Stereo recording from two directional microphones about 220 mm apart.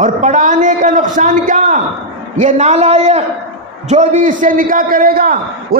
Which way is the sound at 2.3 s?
30° right (ahead or behind).